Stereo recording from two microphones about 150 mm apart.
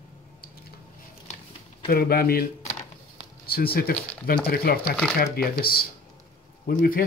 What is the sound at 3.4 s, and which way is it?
Speech, 90° left.